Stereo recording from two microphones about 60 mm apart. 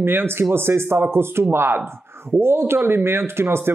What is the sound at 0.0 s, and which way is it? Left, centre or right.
Speech, right.